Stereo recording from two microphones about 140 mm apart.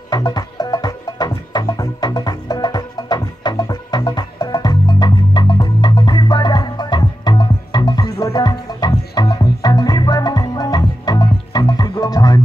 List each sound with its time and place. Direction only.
0.1 s music: 30° left (ahead or behind)